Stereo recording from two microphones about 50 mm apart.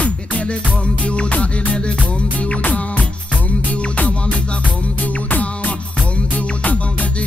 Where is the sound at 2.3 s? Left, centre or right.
Left.